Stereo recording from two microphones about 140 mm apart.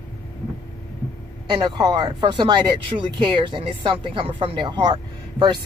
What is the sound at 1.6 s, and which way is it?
Speech, 30° right (ahead or behind).